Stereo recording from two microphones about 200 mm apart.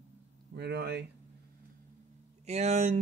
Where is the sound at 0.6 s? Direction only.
55° right (ahead or behind).